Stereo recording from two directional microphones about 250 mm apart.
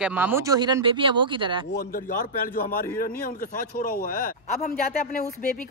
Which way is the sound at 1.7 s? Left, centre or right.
Left.